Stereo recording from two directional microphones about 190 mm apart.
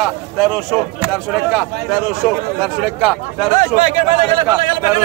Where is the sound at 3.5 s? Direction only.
40° right (ahead or behind).